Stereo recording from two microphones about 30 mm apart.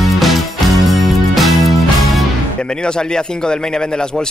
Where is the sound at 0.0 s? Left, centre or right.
Centre.